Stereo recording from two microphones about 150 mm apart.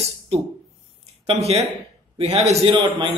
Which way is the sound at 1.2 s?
45° right (ahead or behind).